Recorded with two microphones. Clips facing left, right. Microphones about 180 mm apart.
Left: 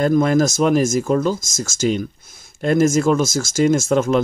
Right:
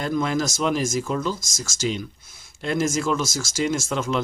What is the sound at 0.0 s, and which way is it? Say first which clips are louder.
Speech: left 8 dB; 50° left (ahead or behind).